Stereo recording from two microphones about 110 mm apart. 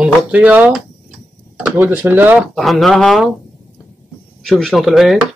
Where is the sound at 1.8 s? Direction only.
15° right (ahead or behind).